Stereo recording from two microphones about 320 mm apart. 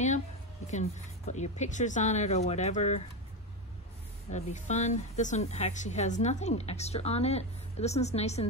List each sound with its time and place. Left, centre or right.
0.7 s speech: left
4.3 s speech: left